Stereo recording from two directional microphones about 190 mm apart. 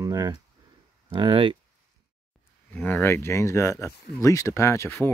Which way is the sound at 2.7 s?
10° left (ahead or behind).